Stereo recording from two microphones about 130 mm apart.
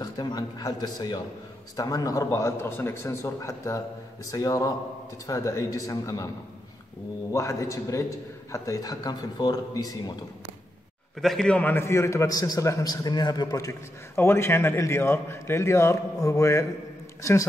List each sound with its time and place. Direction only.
0.0 s a man's voice: 30° left (ahead or behind)
7.3 s a man's voice: 20° left (ahead or behind)
11.1 s a man's voice: centre (ahead or behind); by 17.5 s 25° left (ahead or behind)